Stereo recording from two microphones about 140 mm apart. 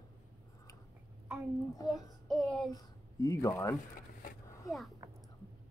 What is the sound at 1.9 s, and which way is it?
Child singing, centre (ahead or behind).